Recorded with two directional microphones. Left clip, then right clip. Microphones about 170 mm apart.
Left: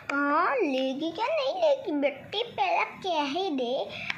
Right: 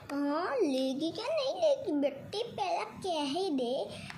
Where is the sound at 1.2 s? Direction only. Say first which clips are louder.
Left 5 dB; 20° right (ahead or behind).